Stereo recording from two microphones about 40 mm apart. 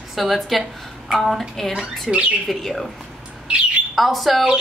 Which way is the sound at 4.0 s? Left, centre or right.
Centre.